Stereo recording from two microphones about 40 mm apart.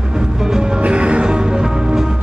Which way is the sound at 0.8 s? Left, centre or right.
Right.